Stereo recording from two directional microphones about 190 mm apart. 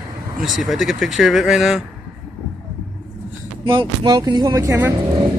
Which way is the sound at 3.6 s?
25° right (ahead or behind).